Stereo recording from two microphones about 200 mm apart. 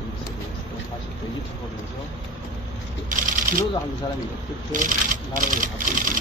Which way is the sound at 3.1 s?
40° right (ahead or behind).